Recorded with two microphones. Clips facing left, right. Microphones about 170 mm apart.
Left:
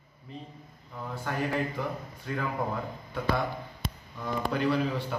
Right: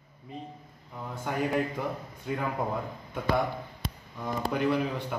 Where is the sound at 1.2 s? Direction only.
20° right (ahead or behind).